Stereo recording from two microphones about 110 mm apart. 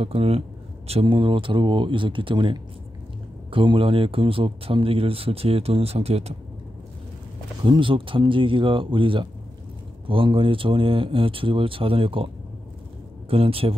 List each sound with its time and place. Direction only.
0.0 s speech: 60° right (ahead or behind)
7.6 s speech: 50° right (ahead or behind)
13.3 s speech: 60° right (ahead or behind)